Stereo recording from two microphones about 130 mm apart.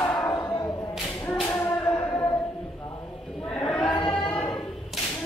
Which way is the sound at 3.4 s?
10° left (ahead or behind).